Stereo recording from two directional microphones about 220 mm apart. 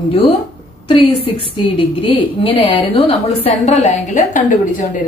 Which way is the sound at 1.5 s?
25° left (ahead or behind).